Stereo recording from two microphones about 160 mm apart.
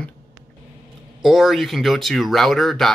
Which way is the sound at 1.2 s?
Centre (ahead or behind).